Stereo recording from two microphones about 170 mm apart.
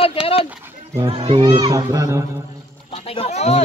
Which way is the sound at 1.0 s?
30° right (ahead or behind).